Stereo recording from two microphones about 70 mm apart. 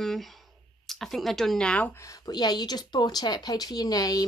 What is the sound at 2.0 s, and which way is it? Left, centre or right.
Speech, left.